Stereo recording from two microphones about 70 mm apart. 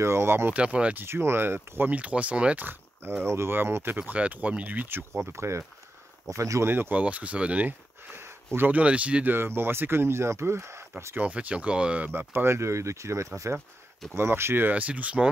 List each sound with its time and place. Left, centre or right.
0.0 s speech: right
0.5 s speech: centre
1.0 s speech: right
2.0 s speech: centre; by 6.7 s right
6.7 s speech: right
7.0 s speech: right
8.2 s a sound: right
8.6 s speech: centre
9.3 s speech: right
11.1 s speech: centre
12.1 s speech: right